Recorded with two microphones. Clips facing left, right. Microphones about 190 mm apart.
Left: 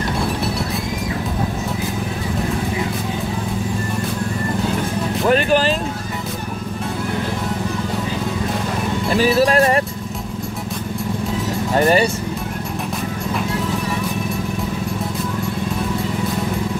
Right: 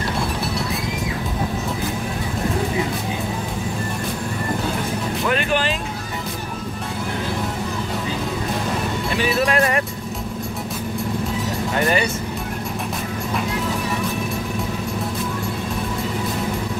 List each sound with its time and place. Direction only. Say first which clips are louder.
5.3 s speech: left 7 dB; 35° left (ahead or behind)
9.2 s music: left 5 dB; 35° left (ahead or behind)
11.7 s speech: left 6 dB; 35° left (ahead or behind)